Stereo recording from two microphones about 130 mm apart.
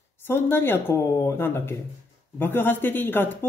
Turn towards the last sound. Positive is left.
turn(degrees=15)  # may be behind; listen again after turning